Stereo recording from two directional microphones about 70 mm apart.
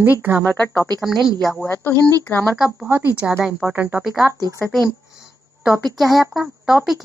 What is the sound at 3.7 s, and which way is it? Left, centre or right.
Speech, right.